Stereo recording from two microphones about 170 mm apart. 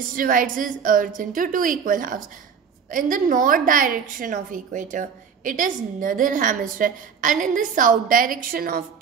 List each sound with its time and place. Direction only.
0.1 s a woman's voice: 55° right (ahead or behind)